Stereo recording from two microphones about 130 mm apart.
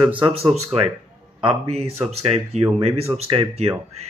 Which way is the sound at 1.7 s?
55° right (ahead or behind).